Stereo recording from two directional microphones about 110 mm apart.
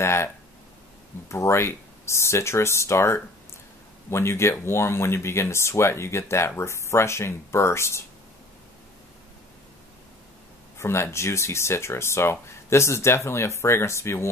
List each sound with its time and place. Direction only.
0.0 s speech: 25° left (ahead or behind)
1.3 s speech: 25° left (ahead or behind)
10.8 s speech: 25° left (ahead or behind)